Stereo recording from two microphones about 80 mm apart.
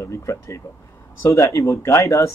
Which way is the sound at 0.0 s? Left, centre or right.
Left.